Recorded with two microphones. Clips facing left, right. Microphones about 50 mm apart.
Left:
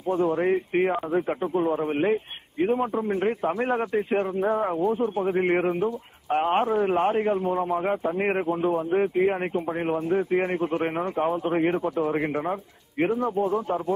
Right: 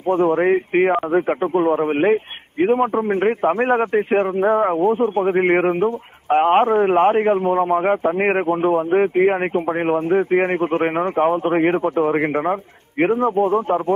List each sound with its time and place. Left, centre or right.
0.1 s a man's voice: right